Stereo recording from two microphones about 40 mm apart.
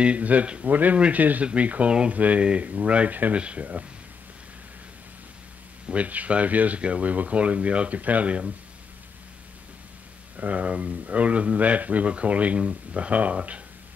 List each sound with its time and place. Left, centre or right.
0.0 s speech: right
1.4 s speech: right
1.9 s speech: right
2.1 s speech: right
3.1 s speech: right
3.3 s speech: right
5.9 s speech: right
10.3 s speech: right